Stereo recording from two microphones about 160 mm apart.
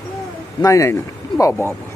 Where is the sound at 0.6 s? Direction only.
20° left (ahead or behind).